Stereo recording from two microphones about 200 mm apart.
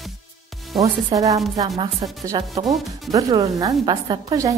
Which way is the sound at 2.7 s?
Centre (ahead or behind).